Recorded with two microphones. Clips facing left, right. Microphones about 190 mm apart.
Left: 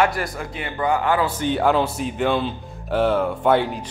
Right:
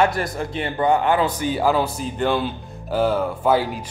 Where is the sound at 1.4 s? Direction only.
5° right (ahead or behind).